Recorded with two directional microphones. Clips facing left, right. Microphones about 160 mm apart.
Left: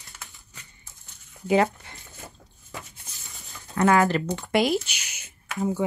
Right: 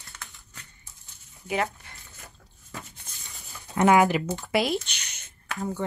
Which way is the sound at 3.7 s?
15° right (ahead or behind).